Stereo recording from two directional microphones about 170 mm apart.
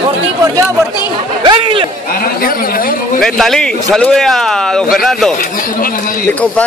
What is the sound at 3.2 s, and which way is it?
Speech, centre (ahead or behind).